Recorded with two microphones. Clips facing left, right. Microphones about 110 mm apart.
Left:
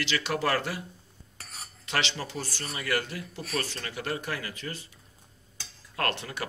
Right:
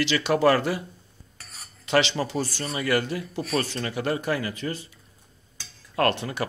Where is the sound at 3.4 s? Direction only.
30° right (ahead or behind).